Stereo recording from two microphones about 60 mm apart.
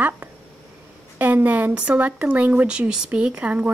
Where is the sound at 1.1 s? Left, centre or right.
Right.